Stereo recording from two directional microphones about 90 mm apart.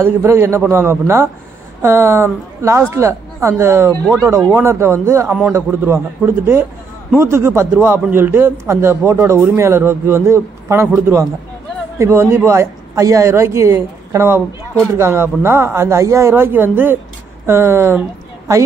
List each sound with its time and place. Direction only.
0.0 s a man's voice: 25° right (ahead or behind)
12.0 s a woman's voice: 30° right (ahead or behind)